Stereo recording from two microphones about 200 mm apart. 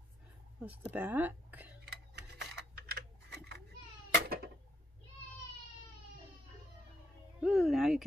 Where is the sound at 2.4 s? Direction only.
55° right (ahead or behind).